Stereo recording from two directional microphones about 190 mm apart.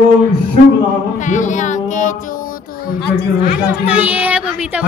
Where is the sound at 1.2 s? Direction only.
40° left (ahead or behind).